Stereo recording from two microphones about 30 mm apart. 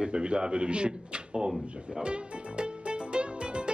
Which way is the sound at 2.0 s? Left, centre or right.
Right.